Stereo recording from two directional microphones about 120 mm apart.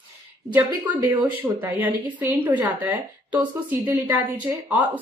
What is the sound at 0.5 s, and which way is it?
Speech, 15° right (ahead or behind).